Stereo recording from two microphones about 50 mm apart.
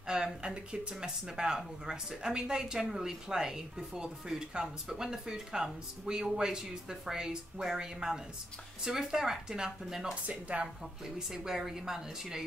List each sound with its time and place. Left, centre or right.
0.0 s speech: centre
10.5 s speech: right
11.1 s speech: centre